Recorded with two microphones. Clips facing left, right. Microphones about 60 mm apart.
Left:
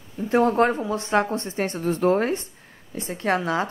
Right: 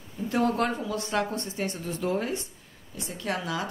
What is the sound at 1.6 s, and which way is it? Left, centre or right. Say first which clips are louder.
A woman's voice: left 10 dB; left.